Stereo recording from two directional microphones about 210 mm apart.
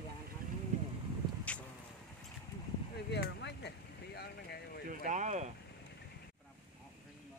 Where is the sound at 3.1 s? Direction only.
55° left (ahead or behind).